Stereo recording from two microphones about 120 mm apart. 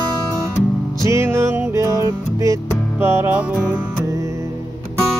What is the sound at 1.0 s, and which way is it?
Music, 20° right (ahead or behind).